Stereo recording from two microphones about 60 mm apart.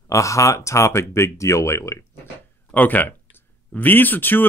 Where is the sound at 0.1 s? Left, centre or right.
Left.